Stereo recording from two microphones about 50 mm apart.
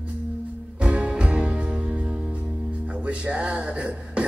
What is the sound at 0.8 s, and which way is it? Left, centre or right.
Music, right.